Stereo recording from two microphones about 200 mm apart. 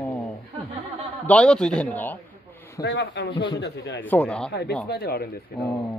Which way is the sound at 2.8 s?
65° left (ahead or behind).